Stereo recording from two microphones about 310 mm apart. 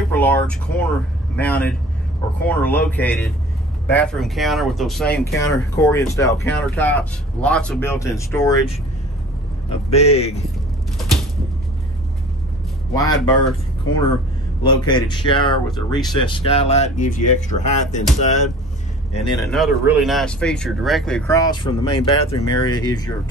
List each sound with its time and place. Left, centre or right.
0.1 s speech: centre
9.8 s speech: left
12.9 s speech: centre
14.6 s speech: centre
19.5 s speech: centre